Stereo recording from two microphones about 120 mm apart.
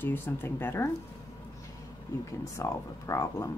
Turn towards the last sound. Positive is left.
turn(degrees=25)  # may be behind; listen again after turning